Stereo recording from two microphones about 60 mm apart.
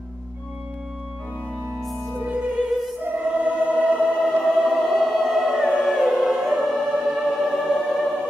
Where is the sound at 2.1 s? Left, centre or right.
Right.